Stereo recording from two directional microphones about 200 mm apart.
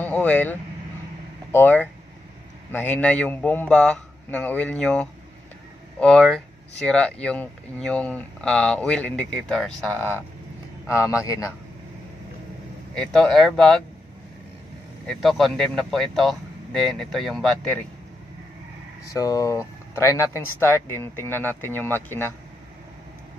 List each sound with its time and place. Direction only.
0.0 s speech: 5° left (ahead or behind)
10.9 s speech: 15° left (ahead or behind)
12.9 s speech: 5° left (ahead or behind)
15.0 s speech: centre (ahead or behind)
19.0 s speech: 15° left (ahead or behind)